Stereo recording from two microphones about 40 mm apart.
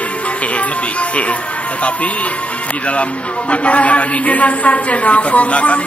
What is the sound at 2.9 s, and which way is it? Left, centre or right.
A man's voice, left.